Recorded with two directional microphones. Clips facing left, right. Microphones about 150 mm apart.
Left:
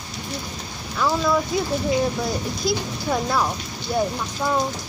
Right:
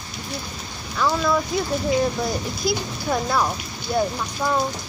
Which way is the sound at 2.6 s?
5° right (ahead or behind).